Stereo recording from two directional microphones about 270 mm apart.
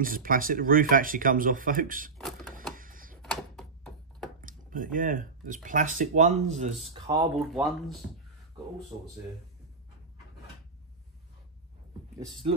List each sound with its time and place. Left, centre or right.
0.0 s speech: right
2.7 s typewriter: right
3.2 s a sound: centre
4.4 s speech: right
7.5 s speech: centre